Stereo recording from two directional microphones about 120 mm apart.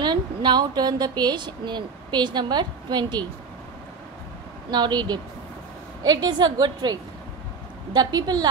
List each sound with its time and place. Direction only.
0.0 s speech: 40° right (ahead or behind)
4.6 s speech: 35° right (ahead or behind)